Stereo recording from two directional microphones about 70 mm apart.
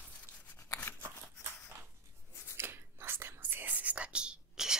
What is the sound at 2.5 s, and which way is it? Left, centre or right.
Whispering, right.